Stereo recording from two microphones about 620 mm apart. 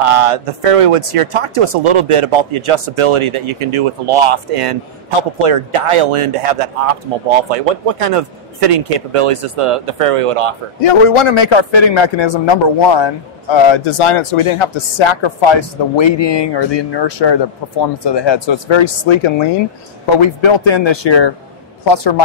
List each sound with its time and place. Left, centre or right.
0.0 s speech: right
10.8 s a woman's voice: left